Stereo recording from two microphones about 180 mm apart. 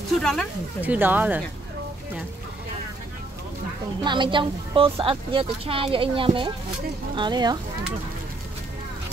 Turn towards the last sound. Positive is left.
turn(degrees=-25)  # may be behind; listen again after turning